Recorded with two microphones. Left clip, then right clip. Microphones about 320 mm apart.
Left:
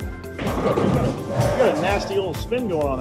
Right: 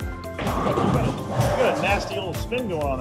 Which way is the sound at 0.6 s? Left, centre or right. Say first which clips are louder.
Left 3 dB; centre.